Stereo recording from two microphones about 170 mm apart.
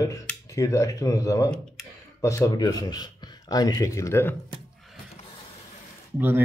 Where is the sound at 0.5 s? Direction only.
20° left (ahead or behind).